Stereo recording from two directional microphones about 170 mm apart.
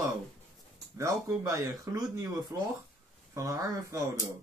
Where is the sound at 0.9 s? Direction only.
15° right (ahead or behind).